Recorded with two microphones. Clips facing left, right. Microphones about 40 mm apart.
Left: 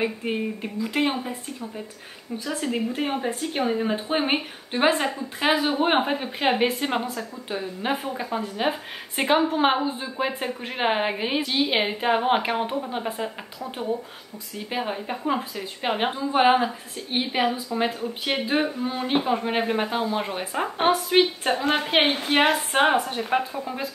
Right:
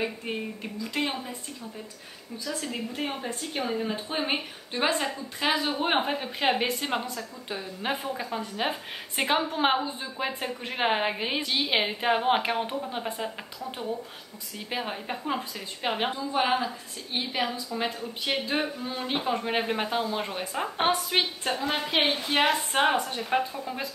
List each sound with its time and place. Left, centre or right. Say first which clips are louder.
0.0 s a woman's voice: left 5 dB; centre
14.9 s a woman's voice: left 5 dB; centre
16.1 s a woman's voice: left 9 dB; left; by 21.3 s centre
21.5 s a woman's voice: left 6 dB; left
21.7 s a woman's voice: left 3 dB; left
22.3 s a woman's voice: left 4 dB; centre